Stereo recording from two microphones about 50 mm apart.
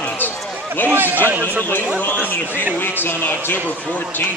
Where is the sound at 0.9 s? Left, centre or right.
Right.